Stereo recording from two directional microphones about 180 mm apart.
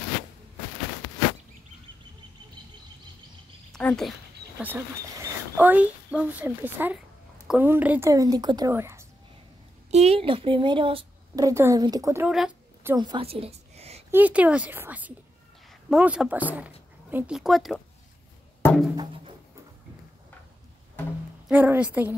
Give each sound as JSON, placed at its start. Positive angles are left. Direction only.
{"t": 3.7, "sound": "speech", "side_deg": 5}
{"t": 4.6, "sound": "a child's voice", "side_deg": -10}
{"t": 9.8, "sound": "a woman's voice", "side_deg": -35}
{"t": 11.3, "sound": "a woman's voice", "side_deg": -15}
{"t": 12.3, "sound": "a sound", "side_deg": -5}
{"t": 12.9, "sound": "a woman's voice", "side_deg": -25}
{"t": 14.1, "sound": "a woman's voice", "side_deg": -10}
{"t": 21.0, "sound": "music", "side_deg": 10}
{"t": 21.5, "sound": "a woman's voice", "side_deg": -10}